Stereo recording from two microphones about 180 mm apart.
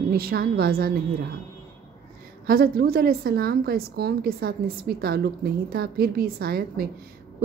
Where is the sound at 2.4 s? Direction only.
55° right (ahead or behind).